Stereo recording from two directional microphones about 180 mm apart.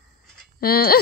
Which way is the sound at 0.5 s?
55° left (ahead or behind).